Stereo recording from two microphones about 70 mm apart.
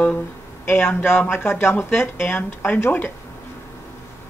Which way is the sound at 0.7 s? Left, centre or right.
Left.